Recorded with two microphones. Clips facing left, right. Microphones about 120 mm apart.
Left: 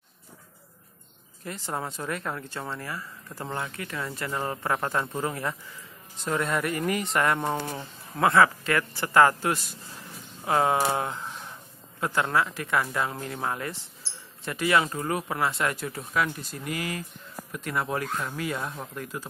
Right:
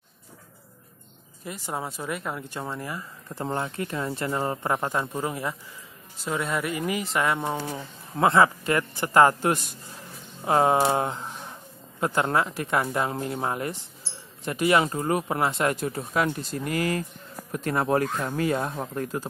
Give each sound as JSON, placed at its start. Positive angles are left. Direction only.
{"t": 1.4, "sound": "speech", "side_deg": -10}
{"t": 8.1, "sound": "speech", "side_deg": -20}
{"t": 16.5, "sound": "speech", "side_deg": -40}